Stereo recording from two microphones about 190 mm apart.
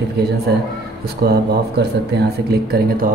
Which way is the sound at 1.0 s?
55° right (ahead or behind).